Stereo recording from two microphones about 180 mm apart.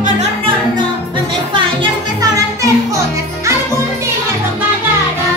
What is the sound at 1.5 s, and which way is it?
Music, 25° right (ahead or behind).